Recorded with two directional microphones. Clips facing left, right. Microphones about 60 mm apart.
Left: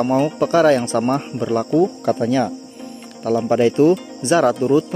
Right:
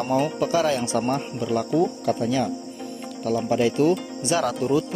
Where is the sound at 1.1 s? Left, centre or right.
Left.